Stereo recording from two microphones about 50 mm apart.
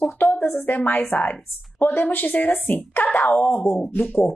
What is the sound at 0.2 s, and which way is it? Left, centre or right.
A woman's voice, left.